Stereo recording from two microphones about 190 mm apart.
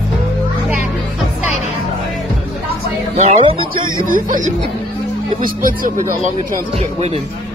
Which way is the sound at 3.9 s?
45° right (ahead or behind).